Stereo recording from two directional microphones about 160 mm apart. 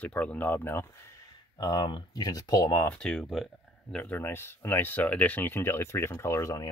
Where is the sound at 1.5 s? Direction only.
25° left (ahead or behind).